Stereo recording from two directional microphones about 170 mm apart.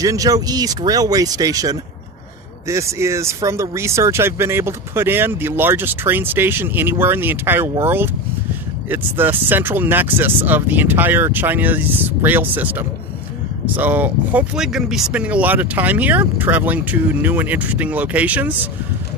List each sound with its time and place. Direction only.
0.0 s speech: 20° right (ahead or behind)